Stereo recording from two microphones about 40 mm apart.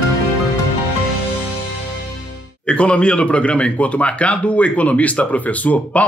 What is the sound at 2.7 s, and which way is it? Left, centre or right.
Speech, left.